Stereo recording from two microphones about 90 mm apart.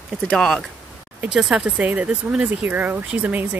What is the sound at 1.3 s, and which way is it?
Speech, 5° right (ahead or behind).